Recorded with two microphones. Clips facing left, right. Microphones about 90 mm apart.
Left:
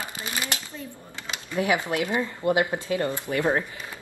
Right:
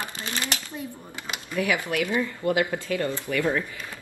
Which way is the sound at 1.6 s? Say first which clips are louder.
Left 1 dB; 20° left (ahead or behind).